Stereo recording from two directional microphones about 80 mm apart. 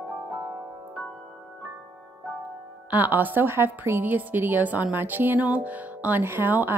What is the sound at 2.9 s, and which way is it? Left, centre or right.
A woman's voice, right.